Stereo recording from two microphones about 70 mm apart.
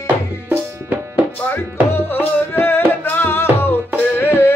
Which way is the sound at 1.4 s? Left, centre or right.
Left.